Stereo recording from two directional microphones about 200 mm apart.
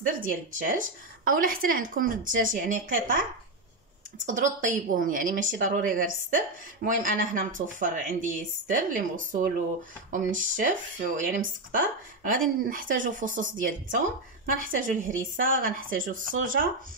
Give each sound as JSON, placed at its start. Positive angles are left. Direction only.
{"t": 0.0, "sound": "speech", "side_deg": -45}
{"t": 4.3, "sound": "speech", "side_deg": -40}